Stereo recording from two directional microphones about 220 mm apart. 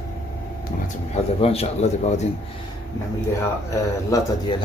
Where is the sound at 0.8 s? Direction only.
30° left (ahead or behind).